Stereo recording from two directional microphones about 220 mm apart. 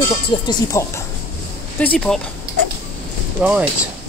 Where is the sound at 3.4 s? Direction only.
5° right (ahead or behind).